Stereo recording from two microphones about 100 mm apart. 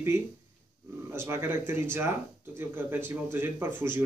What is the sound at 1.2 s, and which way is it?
Speech, 25° right (ahead or behind).